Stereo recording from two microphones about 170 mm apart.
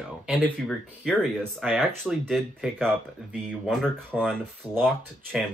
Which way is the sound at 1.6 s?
Centre (ahead or behind).